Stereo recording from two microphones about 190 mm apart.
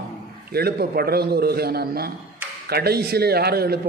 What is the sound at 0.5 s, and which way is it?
A man's voice, 55° right (ahead or behind).